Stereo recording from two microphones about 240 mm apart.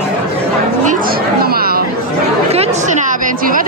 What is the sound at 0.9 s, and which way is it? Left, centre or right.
Chatter, right.